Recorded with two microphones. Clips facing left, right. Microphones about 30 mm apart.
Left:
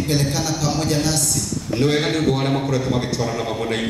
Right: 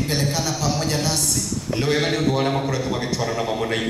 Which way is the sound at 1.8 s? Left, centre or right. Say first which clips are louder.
Left 2 dB; centre.